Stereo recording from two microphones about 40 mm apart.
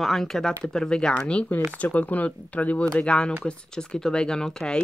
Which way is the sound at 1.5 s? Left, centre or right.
Left.